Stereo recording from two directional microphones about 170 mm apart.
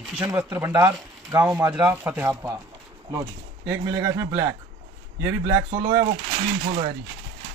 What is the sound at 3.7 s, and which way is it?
A man's voice, 15° right (ahead or behind).